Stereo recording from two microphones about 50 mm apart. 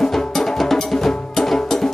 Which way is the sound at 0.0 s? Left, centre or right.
Centre.